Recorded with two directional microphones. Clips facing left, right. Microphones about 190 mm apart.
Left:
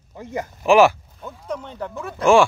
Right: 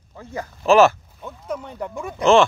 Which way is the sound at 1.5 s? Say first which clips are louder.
Even; 10° right (ahead or behind).